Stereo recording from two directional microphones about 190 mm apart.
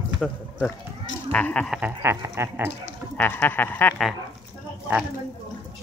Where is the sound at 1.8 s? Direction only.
10° right (ahead or behind).